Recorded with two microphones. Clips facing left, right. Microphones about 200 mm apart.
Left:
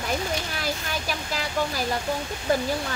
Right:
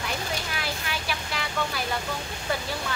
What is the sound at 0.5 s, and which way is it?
Speech, 40° left (ahead or behind).